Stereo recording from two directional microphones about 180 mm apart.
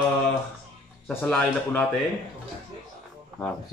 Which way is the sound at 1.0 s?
10° left (ahead or behind).